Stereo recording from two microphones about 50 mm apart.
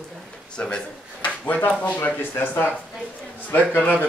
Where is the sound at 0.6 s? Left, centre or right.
Left.